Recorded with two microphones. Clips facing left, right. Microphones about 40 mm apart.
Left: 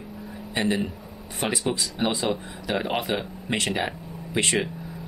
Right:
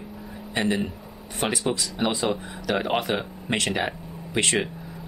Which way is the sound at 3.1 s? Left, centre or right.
Centre.